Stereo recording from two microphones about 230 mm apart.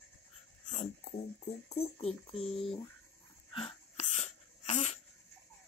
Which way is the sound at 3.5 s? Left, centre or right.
Left.